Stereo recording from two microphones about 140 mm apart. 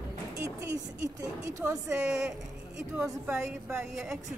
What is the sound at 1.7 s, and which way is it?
Speech, 5° right (ahead or behind).